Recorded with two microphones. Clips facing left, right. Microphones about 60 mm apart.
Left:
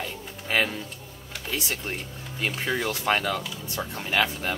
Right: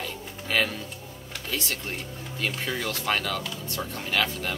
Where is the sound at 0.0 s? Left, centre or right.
Centre.